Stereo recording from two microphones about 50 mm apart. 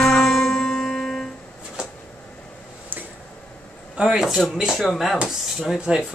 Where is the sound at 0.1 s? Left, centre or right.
Centre.